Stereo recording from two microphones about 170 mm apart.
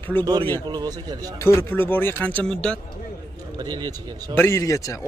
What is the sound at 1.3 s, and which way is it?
A man's voice, 15° left (ahead or behind).